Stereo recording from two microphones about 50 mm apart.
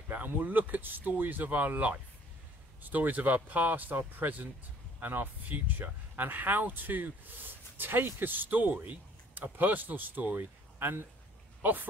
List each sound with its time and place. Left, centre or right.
0.1 s speech: right